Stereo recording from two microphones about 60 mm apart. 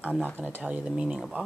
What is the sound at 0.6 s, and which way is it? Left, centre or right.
Speech, right.